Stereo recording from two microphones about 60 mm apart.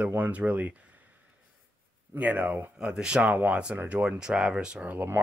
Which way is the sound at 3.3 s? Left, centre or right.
Right.